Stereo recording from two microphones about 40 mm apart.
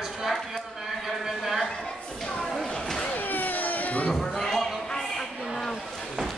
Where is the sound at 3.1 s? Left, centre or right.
Left.